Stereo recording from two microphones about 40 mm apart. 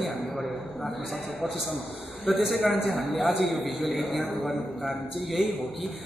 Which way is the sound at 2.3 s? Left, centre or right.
Centre.